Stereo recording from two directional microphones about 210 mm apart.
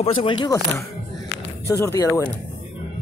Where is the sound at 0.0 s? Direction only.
25° left (ahead or behind).